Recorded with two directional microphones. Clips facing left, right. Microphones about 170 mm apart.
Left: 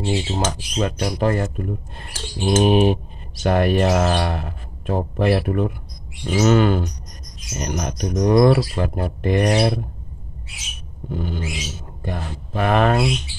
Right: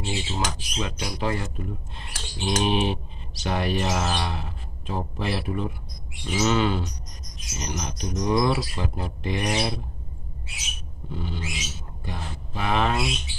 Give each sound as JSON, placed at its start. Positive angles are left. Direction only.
{"t": 0.0, "sound": "speech", "side_deg": 40}
{"t": 11.1, "sound": "speech", "side_deg": 50}